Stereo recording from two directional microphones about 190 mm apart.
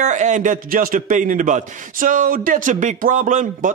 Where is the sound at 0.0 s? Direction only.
40° right (ahead or behind).